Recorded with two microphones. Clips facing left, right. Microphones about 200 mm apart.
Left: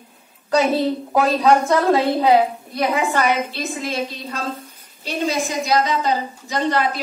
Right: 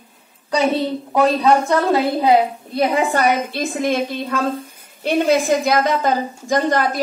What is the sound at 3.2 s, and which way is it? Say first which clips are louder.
A woman's voice: right 2 dB; 50° right (ahead or behind).